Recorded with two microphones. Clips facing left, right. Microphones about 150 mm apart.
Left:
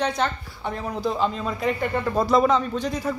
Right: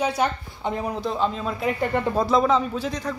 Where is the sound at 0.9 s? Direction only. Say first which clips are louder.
Left 1 dB; centre (ahead or behind).